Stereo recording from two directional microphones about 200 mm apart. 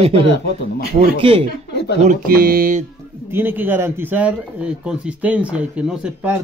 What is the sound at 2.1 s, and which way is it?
Mantra, 45° right (ahead or behind).